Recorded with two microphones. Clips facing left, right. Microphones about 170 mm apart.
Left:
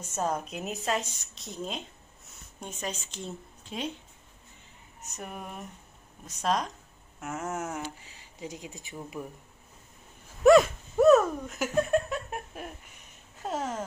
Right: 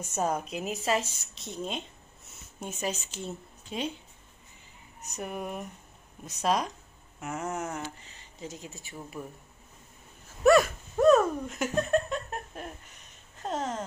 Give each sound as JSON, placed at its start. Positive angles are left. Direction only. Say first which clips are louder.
{"t": 0.0, "sound": "a woman's voice", "louder": "right 1 dB", "side_deg": -10}
{"t": 5.1, "sound": "a woman's voice", "louder": "right 5 dB", "side_deg": -5}
{"t": 10.4, "sound": "a sound", "louder": "left 3 dB", "side_deg": 20}
{"t": 11.0, "sound": "giggle", "louder": "left 1 dB", "side_deg": 5}
{"t": 13.4, "sound": "speech", "louder": "even", "side_deg": 10}